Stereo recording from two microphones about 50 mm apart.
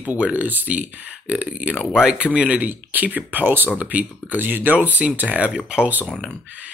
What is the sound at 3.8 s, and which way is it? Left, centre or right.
Speech, right.